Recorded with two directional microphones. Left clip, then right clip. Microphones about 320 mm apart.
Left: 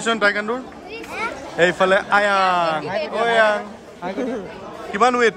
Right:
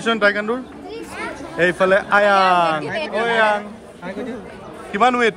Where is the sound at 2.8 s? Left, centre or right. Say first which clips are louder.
Even; centre.